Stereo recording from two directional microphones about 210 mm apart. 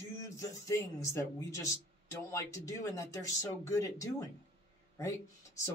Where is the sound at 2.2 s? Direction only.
15° left (ahead or behind).